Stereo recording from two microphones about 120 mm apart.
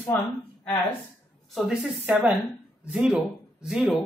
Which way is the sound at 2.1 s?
10° right (ahead or behind).